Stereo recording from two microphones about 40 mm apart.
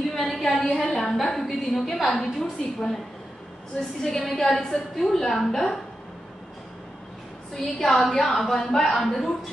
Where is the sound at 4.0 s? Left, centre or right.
Centre.